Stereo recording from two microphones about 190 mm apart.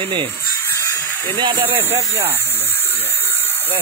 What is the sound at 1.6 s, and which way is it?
Speech, 10° right (ahead or behind).